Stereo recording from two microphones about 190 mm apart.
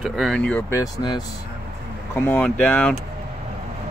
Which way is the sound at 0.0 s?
Centre (ahead or behind).